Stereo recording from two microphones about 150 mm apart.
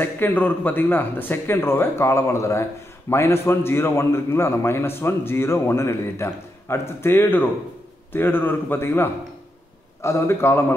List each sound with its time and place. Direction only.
0.0 s a man's voice: 10° left (ahead or behind)